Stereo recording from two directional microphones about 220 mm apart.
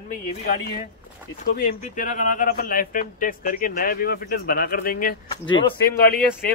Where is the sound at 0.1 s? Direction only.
40° left (ahead or behind).